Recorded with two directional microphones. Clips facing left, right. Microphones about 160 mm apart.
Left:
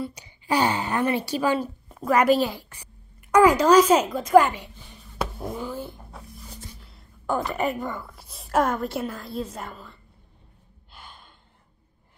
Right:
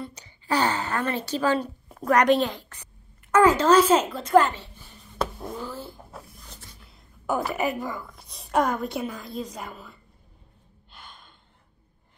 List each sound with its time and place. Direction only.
0.0 s a woman's voice: 10° left (ahead or behind)
5.6 s cat: 15° left (ahead or behind)
6.1 s a sound: 5° left (ahead or behind)
6.8 s a woman's voice: centre (ahead or behind)
10.9 s gasp: 10° left (ahead or behind)